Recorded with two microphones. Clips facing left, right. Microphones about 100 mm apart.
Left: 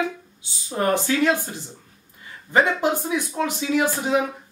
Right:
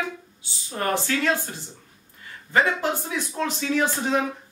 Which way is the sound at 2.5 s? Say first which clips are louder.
Left 3 dB; 20° left (ahead or behind).